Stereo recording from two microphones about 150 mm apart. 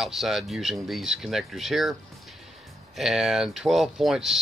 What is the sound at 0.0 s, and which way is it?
Speech, centre (ahead or behind).